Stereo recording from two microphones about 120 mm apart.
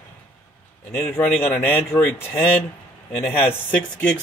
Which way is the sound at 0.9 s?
15° left (ahead or behind).